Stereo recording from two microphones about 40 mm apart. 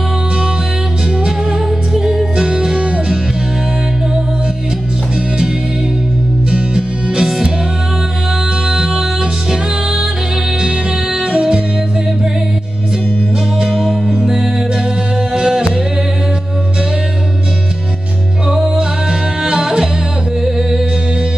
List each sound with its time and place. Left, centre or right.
2.0 s music: centre
6.5 s music: right
8.6 s music: centre
11.1 s music: right
13.7 s music: centre
14.1 s music: centre
18.5 s music: centre